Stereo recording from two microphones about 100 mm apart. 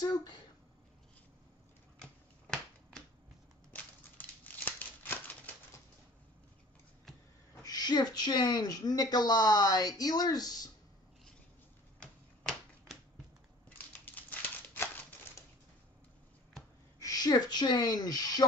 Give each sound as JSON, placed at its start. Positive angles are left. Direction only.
{"t": 0.0, "sound": "speech", "side_deg": 45}
{"t": 2.0, "sound": "typewriter", "side_deg": 5}
{"t": 3.7, "sound": "crumpling", "side_deg": 15}
{"t": 7.6, "sound": "a woman's voice", "side_deg": 45}
{"t": 12.4, "sound": "a sound", "side_deg": 5}
{"t": 13.9, "sound": "a sound", "side_deg": 15}
{"t": 17.0, "sound": "speech", "side_deg": 40}